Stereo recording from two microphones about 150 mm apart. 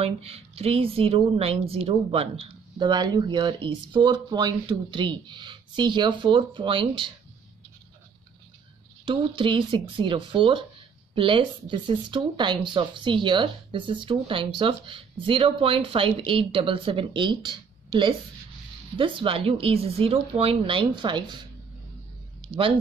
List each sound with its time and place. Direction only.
0.0 s a woman's voice: 40° right (ahead or behind)
9.0 s a woman's voice: 35° right (ahead or behind)
18.9 s a woman's voice: 35° right (ahead or behind)